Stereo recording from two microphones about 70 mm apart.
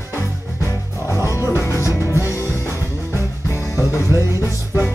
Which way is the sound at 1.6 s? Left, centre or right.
Left.